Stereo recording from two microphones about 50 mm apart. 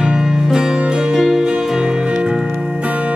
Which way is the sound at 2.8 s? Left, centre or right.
Right.